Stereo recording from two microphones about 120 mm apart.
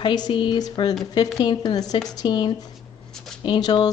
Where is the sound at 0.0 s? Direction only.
40° left (ahead or behind).